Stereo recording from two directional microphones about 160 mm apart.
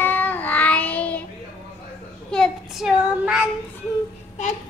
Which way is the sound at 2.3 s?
Centre (ahead or behind).